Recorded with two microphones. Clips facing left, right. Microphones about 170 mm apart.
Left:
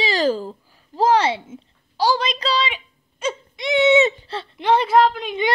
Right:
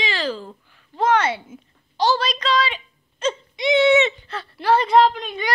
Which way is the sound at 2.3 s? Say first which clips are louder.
Right 1 dB; 35° left (ahead or behind).